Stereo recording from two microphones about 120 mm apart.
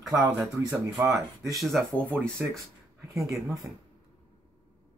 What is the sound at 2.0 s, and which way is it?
Speech, 15° right (ahead or behind).